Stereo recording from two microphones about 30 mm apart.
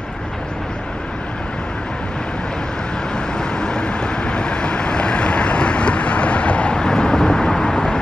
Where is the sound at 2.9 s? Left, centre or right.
Left.